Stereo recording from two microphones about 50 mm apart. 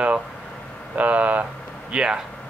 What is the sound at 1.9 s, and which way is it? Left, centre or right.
Speech, centre.